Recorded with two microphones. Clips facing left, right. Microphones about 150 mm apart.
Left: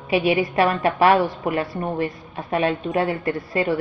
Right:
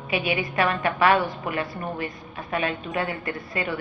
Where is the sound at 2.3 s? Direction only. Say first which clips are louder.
Left 6 dB; 35° left (ahead or behind).